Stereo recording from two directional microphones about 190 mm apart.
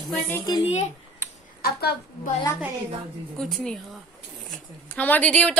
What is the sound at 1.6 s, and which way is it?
Speech, 55° left (ahead or behind).